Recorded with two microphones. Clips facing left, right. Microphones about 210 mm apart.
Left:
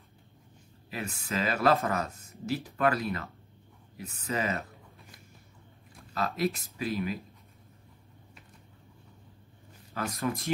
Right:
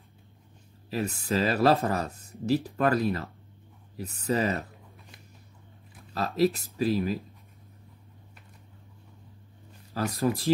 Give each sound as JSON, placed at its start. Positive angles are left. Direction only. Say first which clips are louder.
{"t": 0.8, "sound": "speech", "louder": "right 7 dB", "side_deg": -35}
{"t": 6.1, "sound": "speech", "louder": "right 5 dB", "side_deg": -35}
{"t": 9.9, "sound": "speech", "louder": "right 5 dB", "side_deg": -35}